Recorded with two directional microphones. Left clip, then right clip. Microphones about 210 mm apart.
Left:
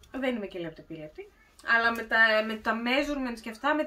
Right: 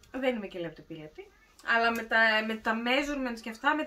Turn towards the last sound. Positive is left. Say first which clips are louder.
# left 1 dB
turn(degrees=-5)  # may be behind; listen again after turning